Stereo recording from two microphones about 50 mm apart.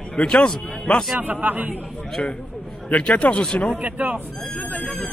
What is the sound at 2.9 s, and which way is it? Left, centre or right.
Speech, left.